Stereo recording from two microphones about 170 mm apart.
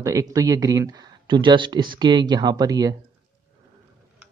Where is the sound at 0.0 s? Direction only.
20° right (ahead or behind).